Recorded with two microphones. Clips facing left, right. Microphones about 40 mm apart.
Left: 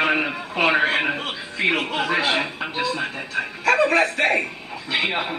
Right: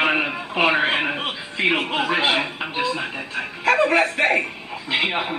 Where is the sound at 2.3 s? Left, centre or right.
Centre.